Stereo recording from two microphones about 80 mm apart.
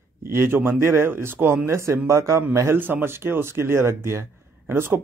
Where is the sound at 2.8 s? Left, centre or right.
Right.